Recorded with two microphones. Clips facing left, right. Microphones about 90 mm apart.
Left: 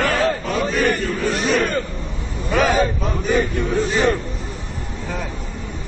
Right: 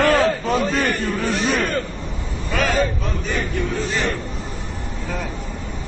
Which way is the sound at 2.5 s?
15° left (ahead or behind).